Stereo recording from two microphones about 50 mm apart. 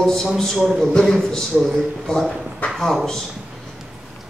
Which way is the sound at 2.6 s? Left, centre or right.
Left.